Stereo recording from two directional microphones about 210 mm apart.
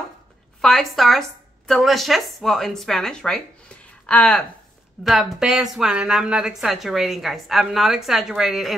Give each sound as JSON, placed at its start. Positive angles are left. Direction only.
{"t": 0.6, "sound": "a woman's voice", "side_deg": 0}